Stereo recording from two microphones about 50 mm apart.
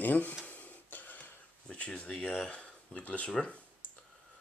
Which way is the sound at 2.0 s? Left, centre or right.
Left.